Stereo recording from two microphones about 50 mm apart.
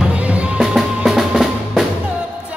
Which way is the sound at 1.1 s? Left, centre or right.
Centre.